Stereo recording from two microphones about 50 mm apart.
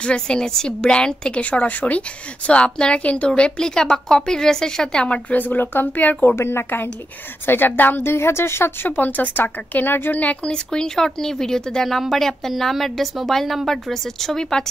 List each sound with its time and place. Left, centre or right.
0.0 s a woman's voice: centre
5.1 s speech: left
6.2 s a woman's voice: left
7.4 s a woman's voice: left
8.8 s speech: left
10.2 s a woman's voice: left